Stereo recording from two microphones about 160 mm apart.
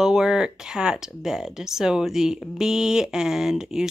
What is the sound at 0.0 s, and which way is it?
Speech, 5° right (ahead or behind).